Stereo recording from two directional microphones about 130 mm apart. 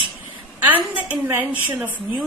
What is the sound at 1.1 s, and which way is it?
A woman's voice, 15° right (ahead or behind).